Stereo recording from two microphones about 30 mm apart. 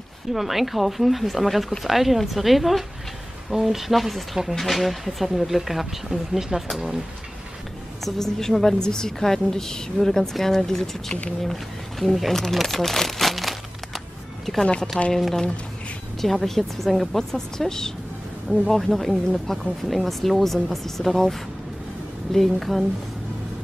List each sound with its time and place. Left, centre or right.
0.3 s speech: centre
8.0 s a woman's voice: centre
12.6 s crumpling: centre
14.6 s speech: left
16.2 s a woman's voice: centre
17.2 s a woman's voice: centre